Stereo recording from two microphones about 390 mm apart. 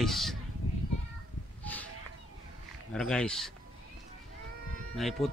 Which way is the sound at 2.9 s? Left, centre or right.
Centre.